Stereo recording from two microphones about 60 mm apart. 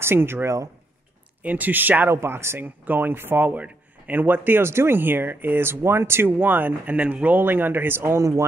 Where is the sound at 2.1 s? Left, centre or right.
Right.